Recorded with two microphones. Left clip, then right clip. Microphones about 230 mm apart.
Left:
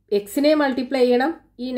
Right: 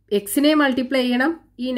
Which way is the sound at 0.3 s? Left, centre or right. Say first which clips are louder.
Right 1 dB; right.